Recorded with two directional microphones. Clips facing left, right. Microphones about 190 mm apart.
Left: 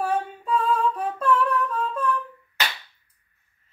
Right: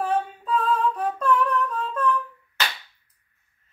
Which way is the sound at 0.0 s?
10° left (ahead or behind).